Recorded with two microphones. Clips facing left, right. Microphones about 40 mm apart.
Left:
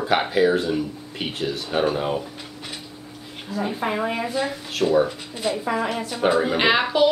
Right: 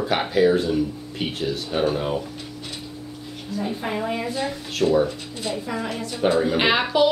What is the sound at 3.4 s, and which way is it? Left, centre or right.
Speech, centre.